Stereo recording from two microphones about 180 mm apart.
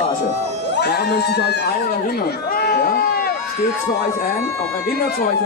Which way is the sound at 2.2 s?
55° left (ahead or behind).